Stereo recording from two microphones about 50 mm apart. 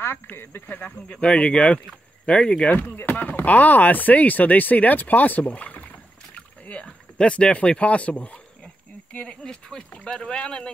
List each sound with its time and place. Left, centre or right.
0.0 s speech: left
0.7 s speech: left
1.1 s speech: left
2.7 s speech: left; by 10.7 s centre